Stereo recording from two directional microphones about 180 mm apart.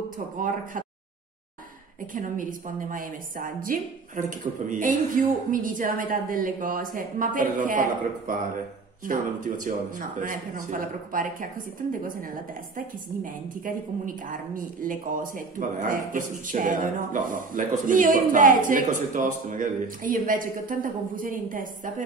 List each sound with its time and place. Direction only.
2.1 s a woman's voice: 45° right (ahead or behind)